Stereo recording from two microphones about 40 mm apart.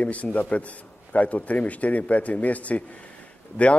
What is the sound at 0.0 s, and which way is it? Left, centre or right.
A man's voice, left.